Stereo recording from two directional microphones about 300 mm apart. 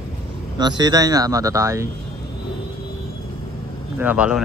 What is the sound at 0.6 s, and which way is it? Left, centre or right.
Speech, centre.